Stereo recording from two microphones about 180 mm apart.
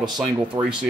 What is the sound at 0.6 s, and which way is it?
Speech, 20° right (ahead or behind).